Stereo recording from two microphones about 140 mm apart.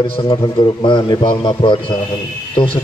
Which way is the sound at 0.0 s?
35° left (ahead or behind).